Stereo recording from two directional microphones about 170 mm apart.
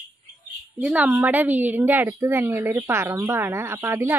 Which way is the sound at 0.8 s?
10° right (ahead or behind).